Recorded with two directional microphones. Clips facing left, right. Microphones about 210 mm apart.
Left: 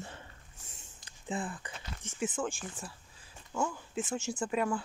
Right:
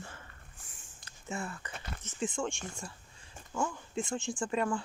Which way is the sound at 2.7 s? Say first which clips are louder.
Even; 5° left (ahead or behind).